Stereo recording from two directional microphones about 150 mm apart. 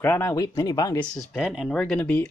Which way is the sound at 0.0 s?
20° left (ahead or behind).